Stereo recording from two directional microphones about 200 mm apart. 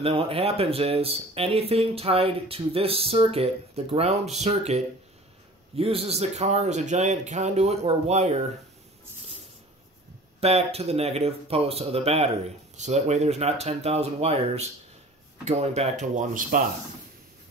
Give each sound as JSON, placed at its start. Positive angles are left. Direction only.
{"t": 0.0, "sound": "speech", "side_deg": -25}
{"t": 10.4, "sound": "speech", "side_deg": -30}